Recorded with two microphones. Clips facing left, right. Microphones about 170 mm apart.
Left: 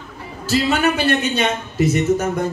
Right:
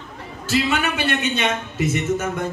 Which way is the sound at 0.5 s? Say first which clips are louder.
Left 4 dB; 40° left (ahead or behind).